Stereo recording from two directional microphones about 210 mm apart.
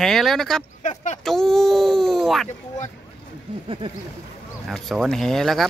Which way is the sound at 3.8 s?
25° right (ahead or behind).